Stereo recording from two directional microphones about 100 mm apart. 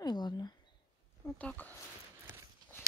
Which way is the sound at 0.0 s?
45° left (ahead or behind).